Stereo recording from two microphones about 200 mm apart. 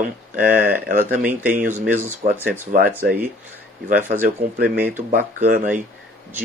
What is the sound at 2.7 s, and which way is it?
Speech, 45° right (ahead or behind).